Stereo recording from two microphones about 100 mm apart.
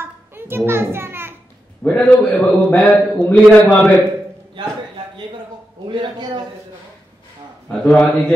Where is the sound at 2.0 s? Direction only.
15° left (ahead or behind).